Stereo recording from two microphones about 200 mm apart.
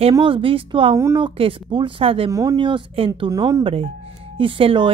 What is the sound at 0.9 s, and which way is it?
Speech, 15° right (ahead or behind).